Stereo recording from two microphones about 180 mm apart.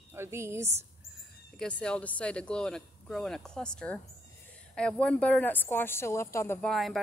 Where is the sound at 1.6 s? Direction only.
5° left (ahead or behind).